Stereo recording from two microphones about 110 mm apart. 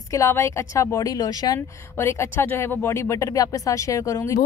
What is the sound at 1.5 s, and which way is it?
Speech, 25° left (ahead or behind).